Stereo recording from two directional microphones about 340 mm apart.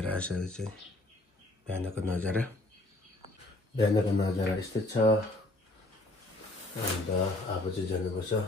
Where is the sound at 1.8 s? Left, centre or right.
Centre.